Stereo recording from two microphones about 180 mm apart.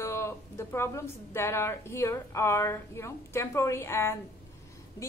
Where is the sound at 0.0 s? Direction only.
15° left (ahead or behind).